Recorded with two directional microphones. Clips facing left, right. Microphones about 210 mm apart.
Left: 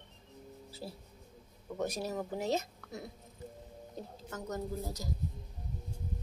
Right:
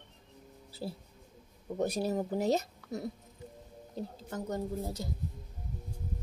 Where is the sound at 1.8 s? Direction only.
35° right (ahead or behind).